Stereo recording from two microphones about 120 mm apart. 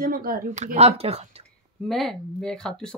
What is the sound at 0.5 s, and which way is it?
Speech, 70° right (ahead or behind).